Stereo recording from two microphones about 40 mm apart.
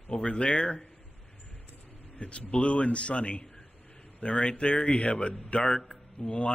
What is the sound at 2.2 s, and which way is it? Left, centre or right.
A man's voice, left.